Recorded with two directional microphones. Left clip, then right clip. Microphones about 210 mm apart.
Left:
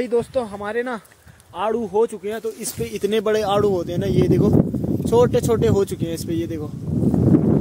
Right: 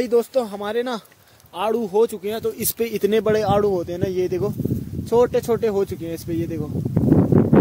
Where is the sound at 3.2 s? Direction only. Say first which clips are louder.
Left 1 dB; centre (ahead or behind).